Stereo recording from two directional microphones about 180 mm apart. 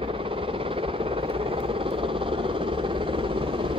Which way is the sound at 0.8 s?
30° right (ahead or behind).